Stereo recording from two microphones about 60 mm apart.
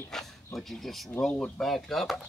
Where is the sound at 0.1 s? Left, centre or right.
Centre.